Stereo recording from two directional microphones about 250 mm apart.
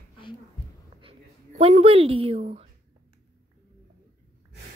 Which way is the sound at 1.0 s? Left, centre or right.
Right.